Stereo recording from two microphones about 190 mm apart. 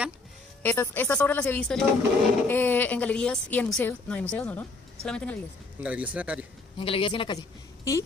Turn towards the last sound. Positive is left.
turn(degrees=20)  # may be behind; listen again after turning